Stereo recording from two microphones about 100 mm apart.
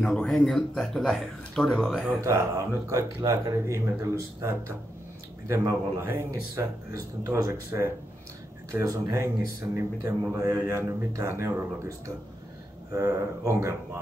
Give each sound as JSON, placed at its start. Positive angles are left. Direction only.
{"t": 0.0, "sound": "a man's voice", "side_deg": 10}
{"t": 2.2, "sound": "speech", "side_deg": -35}
{"t": 8.7, "sound": "speech", "side_deg": -35}
{"t": 12.9, "sound": "speech", "side_deg": -30}